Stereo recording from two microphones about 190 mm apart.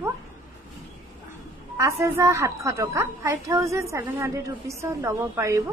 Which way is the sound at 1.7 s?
15° right (ahead or behind).